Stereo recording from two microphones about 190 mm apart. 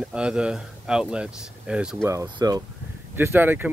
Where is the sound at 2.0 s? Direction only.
20° right (ahead or behind).